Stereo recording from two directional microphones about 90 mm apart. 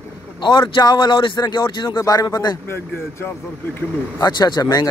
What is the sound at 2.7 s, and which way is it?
Speech, 25° left (ahead or behind).